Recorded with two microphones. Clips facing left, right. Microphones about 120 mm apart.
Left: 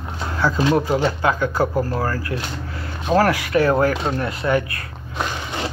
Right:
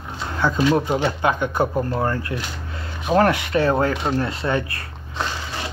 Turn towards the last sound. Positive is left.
turn(degrees=15)  # may be behind; listen again after turning